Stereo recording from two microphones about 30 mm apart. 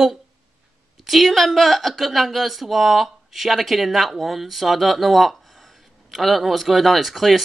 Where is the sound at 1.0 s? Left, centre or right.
Centre.